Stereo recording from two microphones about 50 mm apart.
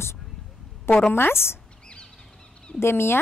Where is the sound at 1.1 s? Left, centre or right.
Left.